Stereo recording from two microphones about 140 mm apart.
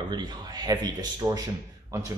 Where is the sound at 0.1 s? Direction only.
30° right (ahead or behind).